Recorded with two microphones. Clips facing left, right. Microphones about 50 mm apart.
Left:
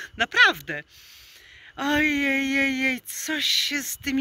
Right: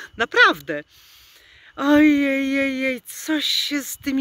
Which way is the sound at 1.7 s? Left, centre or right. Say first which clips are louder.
Right 8 dB; left.